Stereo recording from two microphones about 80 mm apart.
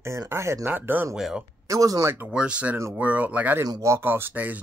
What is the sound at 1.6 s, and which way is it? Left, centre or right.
Speech, right.